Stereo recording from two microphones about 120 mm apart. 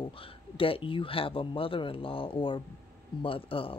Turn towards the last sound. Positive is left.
turn(degrees=50)  # may be behind; listen again after turning